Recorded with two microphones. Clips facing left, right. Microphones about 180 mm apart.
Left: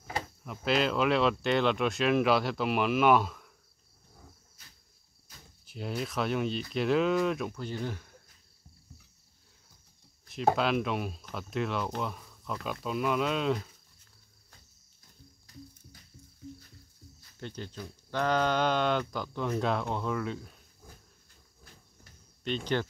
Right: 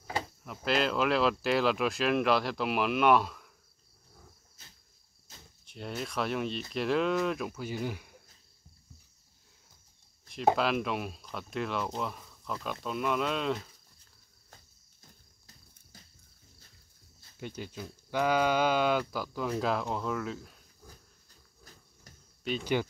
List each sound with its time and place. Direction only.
0.4 s speech: centre (ahead or behind)
4.6 s a sound: 25° right (ahead or behind)
5.3 s cricket: 25° right (ahead or behind)
5.7 s speech: centre (ahead or behind)
10.2 s speech: centre (ahead or behind)
17.4 s speech: 10° right (ahead or behind)
22.4 s speech: 10° right (ahead or behind)